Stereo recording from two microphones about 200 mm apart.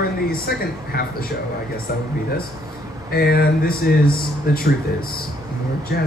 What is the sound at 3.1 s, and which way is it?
Speech, 50° left (ahead or behind).